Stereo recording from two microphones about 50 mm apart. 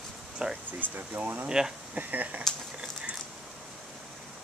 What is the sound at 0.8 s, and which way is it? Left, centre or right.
Speech, right.